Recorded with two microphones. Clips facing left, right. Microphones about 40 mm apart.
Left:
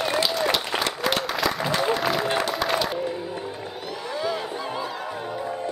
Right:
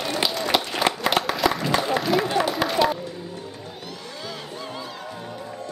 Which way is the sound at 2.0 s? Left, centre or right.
Centre.